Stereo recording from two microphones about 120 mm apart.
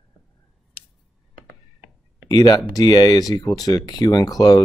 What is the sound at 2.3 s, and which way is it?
Speech, 30° left (ahead or behind).